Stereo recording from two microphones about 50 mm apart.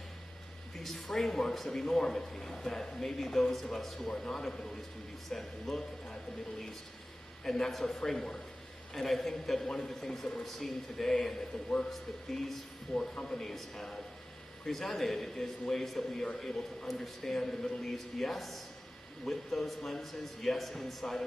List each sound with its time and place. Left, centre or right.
0.7 s a man's voice: centre
7.4 s a man's voice: centre
9.6 s a man's voice: centre
10.4 s a man's voice: centre